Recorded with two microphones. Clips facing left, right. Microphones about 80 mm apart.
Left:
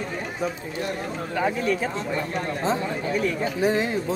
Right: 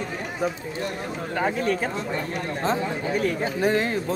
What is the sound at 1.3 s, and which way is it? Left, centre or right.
Speech, right.